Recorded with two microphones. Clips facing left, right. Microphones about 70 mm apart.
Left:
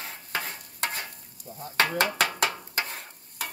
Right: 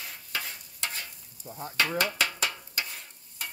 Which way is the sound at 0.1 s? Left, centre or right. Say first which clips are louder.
Left 3 dB; left.